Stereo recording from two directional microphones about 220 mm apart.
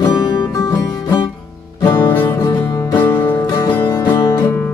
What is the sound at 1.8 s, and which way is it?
Music, 20° left (ahead or behind).